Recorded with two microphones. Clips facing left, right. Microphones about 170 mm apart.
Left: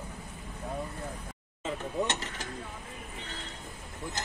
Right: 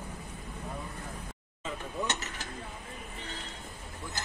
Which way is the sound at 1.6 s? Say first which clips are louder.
Left 4 dB; 30° left (ahead or behind).